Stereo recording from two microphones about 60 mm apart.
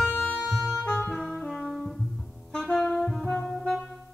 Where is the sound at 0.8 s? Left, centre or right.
Centre.